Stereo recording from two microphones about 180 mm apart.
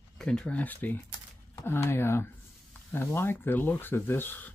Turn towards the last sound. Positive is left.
turn(degrees=10)  # may be behind; listen again after turning